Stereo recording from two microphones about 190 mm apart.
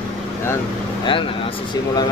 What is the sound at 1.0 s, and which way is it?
Speech, 25° left (ahead or behind).